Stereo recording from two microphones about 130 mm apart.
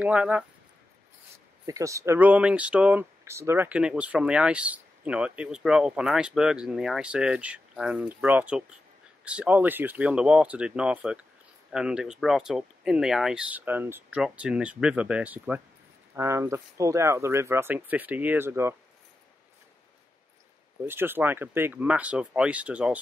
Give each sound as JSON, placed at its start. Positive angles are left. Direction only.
{"t": 0.0, "sound": "speech", "side_deg": -10}
{"t": 1.7, "sound": "speech", "side_deg": -25}
{"t": 2.1, "sound": "speech", "side_deg": -10}
{"t": 20.8, "sound": "speech", "side_deg": -15}